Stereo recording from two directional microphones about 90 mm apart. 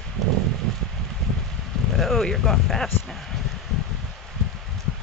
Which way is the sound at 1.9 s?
Centre (ahead or behind).